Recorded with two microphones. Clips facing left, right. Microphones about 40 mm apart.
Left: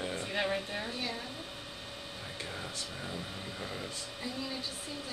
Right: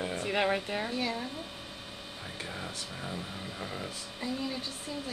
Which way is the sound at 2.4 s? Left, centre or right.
Centre.